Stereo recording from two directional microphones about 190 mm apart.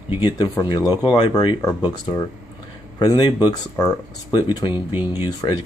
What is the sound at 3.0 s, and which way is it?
Speech, 20° left (ahead or behind).